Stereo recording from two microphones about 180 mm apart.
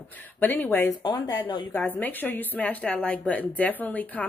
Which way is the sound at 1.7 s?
10° left (ahead or behind).